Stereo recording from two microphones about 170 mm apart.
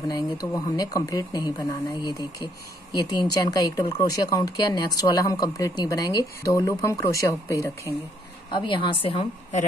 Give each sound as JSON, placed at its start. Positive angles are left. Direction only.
{"t": 0.1, "sound": "speech", "side_deg": 20}
{"t": 8.5, "sound": "speech", "side_deg": 30}